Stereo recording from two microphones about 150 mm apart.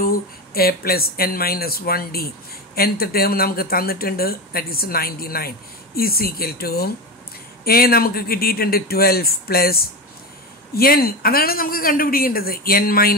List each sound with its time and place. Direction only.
0.0 s speech: 80° left